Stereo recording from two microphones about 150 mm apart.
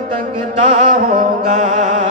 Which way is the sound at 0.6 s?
45° right (ahead or behind).